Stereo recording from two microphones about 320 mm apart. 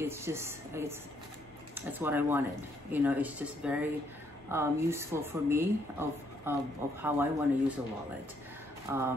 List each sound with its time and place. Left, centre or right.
0.0 s a woman's voice: centre
8.8 s speech: centre